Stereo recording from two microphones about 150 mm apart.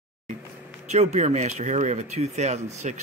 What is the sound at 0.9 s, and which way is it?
Speech, 50° right (ahead or behind).